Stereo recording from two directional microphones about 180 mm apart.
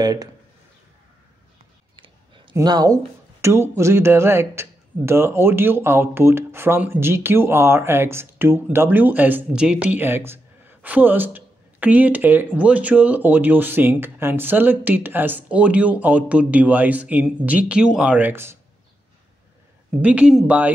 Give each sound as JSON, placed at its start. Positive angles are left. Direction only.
{"t": 0.0, "sound": "speech", "side_deg": -20}
{"t": 2.0, "sound": "a sound", "side_deg": -30}
{"t": 2.5, "sound": "speech", "side_deg": -20}
{"t": 20.0, "sound": "speech", "side_deg": -5}